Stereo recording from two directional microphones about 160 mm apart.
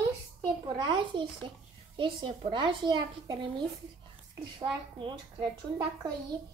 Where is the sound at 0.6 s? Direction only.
30° right (ahead or behind).